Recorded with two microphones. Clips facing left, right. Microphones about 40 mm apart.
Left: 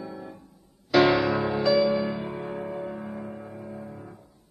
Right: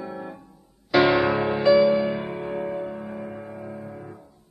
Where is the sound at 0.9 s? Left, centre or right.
Centre.